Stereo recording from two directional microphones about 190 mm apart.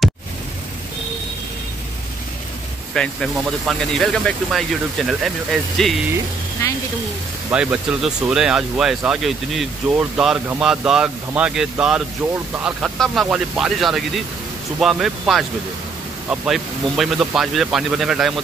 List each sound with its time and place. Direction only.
2.9 s speech: 5° left (ahead or behind)
6.6 s speech: 15° left (ahead or behind)
7.5 s speech: 5° right (ahead or behind)